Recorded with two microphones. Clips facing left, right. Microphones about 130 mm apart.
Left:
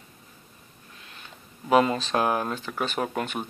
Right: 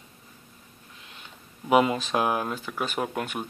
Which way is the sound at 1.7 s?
10° right (ahead or behind).